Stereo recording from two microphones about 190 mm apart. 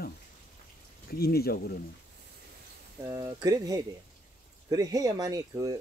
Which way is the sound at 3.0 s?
20° right (ahead or behind).